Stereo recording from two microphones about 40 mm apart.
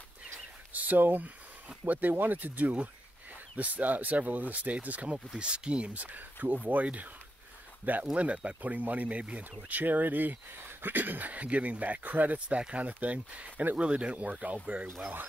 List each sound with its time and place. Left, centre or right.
0.7 s a sound: right
1.9 s speech: right
5.1 s speech: right
6.1 s speech: right
8.1 s speech: right
9.7 s speech: right
12.4 s speech: right